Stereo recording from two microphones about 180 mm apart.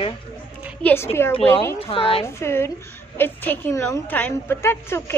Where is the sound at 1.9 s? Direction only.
30° left (ahead or behind).